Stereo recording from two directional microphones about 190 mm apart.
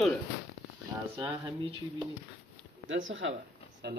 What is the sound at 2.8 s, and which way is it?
Speech, 90° right.